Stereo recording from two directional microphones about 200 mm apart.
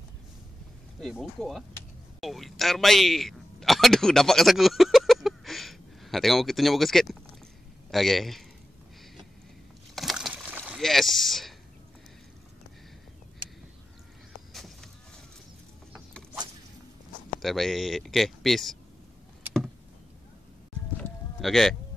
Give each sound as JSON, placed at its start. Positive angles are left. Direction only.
{"t": 1.0, "sound": "a man's voice", "side_deg": 0}
{"t": 9.9, "sound": "slosh", "side_deg": 0}
{"t": 10.8, "sound": "speech", "side_deg": 0}
{"t": 13.4, "sound": "duck", "side_deg": -25}
{"t": 14.5, "sound": "a sound", "side_deg": 0}
{"t": 17.4, "sound": "a man's voice", "side_deg": 0}
{"t": 21.0, "sound": "a sound", "side_deg": 0}